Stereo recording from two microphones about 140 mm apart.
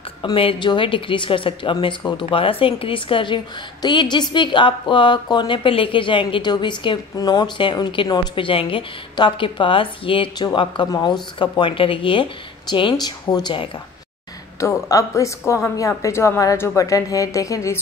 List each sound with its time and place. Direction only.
0.2 s a woman's voice: 35° left (ahead or behind)
14.6 s a woman's voice: 25° left (ahead or behind)